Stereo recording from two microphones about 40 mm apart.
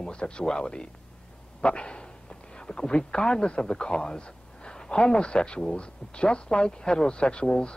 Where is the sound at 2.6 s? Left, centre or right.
Left.